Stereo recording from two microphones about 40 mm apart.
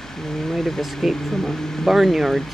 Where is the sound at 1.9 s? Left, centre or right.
Centre.